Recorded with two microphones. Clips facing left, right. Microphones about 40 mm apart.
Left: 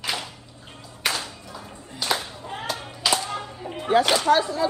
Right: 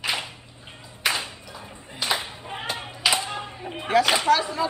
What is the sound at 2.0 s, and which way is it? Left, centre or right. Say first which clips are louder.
Clapping: even; right.